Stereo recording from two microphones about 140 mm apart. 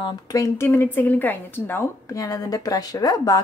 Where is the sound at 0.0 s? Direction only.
30° left (ahead or behind).